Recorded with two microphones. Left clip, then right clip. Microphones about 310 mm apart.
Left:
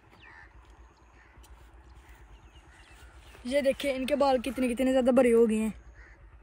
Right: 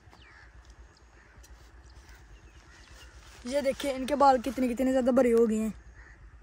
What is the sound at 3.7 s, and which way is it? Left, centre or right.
A woman's voice, centre.